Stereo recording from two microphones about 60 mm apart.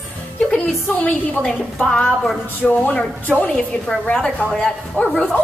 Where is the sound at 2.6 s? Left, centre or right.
Left.